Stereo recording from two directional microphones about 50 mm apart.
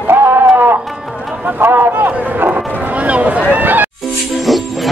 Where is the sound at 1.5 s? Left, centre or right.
Right.